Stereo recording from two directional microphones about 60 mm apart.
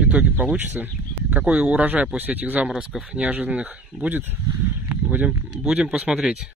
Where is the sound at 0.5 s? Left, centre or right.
Right.